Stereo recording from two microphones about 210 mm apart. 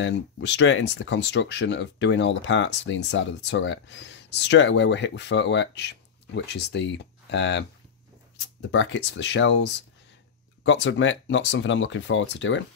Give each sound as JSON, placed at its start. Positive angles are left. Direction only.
{"t": 0.0, "sound": "speech", "side_deg": 60}
{"t": 8.7, "sound": "speech", "side_deg": 60}